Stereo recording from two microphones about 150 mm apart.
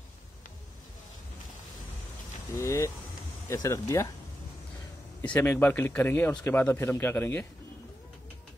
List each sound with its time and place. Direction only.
2.5 s vehicle: 20° left (ahead or behind)
3.4 s speech: 20° left (ahead or behind)
5.2 s speech: 10° left (ahead or behind)